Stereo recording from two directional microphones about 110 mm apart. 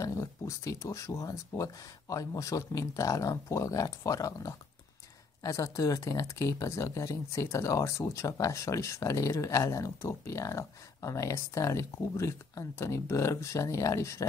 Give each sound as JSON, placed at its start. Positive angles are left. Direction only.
{"t": 0.0, "sound": "speech", "side_deg": 30}